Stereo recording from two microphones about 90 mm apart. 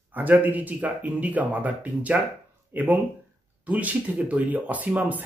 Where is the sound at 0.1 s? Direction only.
20° right (ahead or behind).